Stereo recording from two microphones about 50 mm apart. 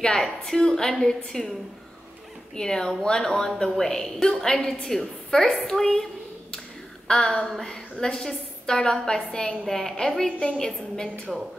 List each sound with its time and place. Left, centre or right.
0.2 s a woman's voice: centre
2.5 s a woman's voice: centre
7.1 s a woman's voice: centre
11.3 s speech: centre